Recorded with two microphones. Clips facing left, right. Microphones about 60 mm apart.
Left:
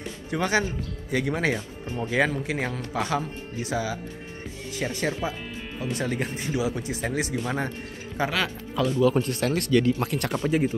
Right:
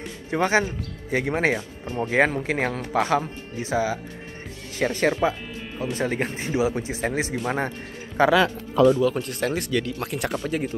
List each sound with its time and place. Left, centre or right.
0.3 s speech: right
4.7 s speech: right
8.2 s speech: right
8.9 s speech: centre
9.5 s speech: centre
9.8 s speech: centre